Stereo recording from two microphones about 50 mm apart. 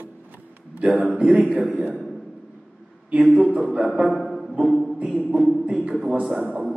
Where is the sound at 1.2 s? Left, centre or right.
Centre.